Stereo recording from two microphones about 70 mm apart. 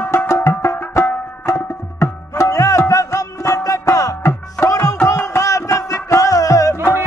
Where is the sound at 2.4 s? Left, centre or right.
Left.